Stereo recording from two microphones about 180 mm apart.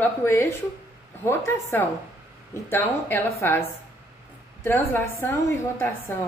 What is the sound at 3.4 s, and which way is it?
Speech, 15° left (ahead or behind).